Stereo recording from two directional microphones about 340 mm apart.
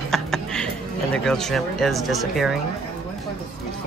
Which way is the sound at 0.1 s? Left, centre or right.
Centre.